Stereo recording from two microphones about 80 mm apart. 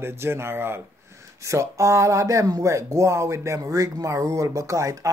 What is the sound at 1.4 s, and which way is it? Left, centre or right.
Speech, right.